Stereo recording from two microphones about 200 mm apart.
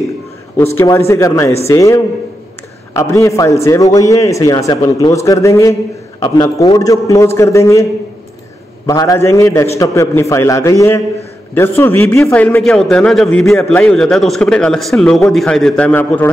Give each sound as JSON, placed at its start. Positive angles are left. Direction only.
{"t": 0.7, "sound": "a man's voice", "side_deg": 15}
{"t": 8.8, "sound": "a man's voice", "side_deg": 15}